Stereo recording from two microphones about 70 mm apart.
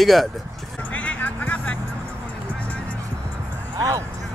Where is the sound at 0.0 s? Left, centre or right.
Centre.